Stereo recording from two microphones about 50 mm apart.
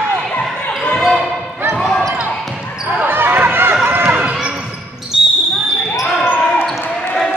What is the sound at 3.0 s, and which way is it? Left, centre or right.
Basketball bounce, right.